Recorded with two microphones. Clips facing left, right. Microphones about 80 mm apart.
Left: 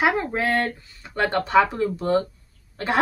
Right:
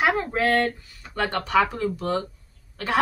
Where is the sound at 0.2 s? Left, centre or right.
Left.